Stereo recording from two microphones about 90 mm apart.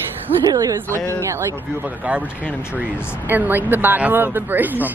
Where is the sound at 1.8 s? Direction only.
15° right (ahead or behind).